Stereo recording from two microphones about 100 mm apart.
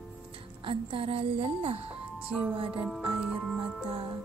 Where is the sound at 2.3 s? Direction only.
10° left (ahead or behind).